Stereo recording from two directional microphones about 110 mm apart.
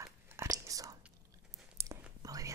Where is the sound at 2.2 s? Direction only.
30° right (ahead or behind).